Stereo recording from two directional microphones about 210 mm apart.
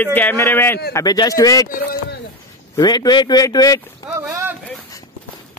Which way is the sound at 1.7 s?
45° left (ahead or behind).